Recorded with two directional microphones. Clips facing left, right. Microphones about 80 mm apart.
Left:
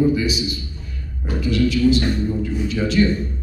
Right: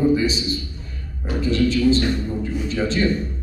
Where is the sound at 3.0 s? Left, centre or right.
Right.